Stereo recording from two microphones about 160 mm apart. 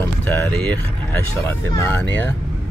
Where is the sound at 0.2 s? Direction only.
15° left (ahead or behind).